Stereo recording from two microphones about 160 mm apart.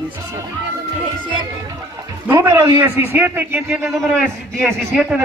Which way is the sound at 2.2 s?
20° right (ahead or behind).